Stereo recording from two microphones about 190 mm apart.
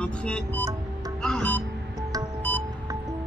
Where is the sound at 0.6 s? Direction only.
20° right (ahead or behind).